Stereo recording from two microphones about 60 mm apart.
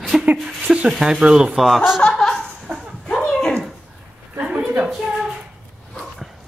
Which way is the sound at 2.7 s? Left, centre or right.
Right.